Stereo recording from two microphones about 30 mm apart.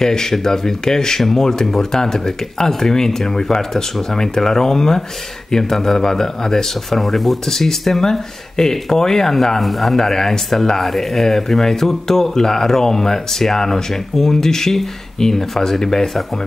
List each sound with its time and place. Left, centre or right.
0.0 s speech: centre
6.9 s speech: centre
9.6 s speech: centre